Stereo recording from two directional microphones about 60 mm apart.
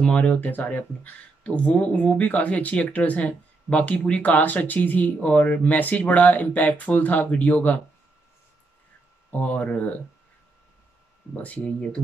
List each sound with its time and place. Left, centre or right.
0.0 s speech: centre
9.3 s speech: left
11.4 s speech: left